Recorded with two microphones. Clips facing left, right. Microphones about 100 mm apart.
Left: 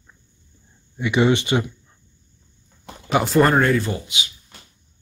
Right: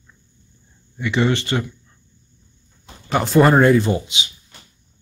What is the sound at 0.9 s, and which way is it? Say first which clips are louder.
Speech: left 2 dB; 15° left (ahead or behind).